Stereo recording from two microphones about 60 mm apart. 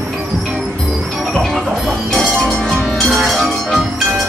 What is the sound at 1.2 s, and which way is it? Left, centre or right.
Music, centre.